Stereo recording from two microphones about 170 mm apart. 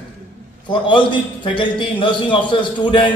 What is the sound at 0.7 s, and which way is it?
A man's voice, 30° left (ahead or behind).